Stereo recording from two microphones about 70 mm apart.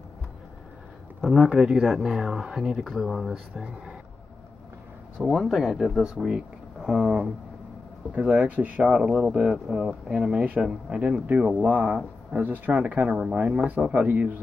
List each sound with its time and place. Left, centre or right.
1.2 s speech: centre
5.2 s speech: centre; by 14.3 s right